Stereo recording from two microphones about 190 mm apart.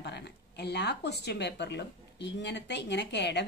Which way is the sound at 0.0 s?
60° left (ahead or behind).